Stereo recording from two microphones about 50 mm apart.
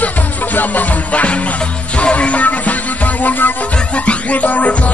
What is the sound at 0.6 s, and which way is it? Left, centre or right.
Music, left.